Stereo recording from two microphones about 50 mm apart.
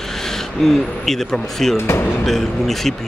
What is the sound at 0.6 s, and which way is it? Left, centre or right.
Speech, centre.